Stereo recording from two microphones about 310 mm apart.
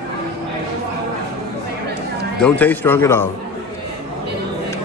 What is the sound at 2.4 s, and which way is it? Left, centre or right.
Speech, centre.